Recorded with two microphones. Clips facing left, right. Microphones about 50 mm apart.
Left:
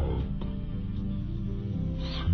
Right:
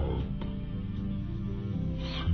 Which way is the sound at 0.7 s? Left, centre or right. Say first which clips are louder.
Left 1 dB; centre.